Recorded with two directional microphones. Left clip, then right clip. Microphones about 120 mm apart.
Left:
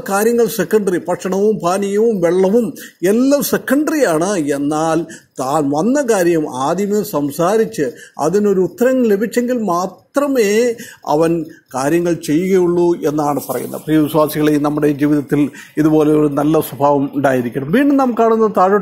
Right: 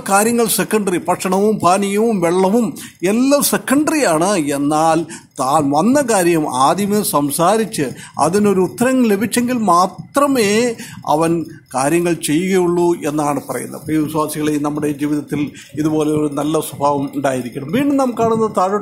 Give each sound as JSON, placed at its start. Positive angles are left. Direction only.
{"t": 0.1, "sound": "speech", "side_deg": -10}
{"t": 3.0, "sound": "speech", "side_deg": 5}
{"t": 11.1, "sound": "speech", "side_deg": 5}
{"t": 13.8, "sound": "a man's voice", "side_deg": 30}